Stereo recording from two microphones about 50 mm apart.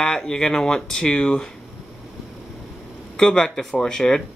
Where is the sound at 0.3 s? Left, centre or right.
Centre.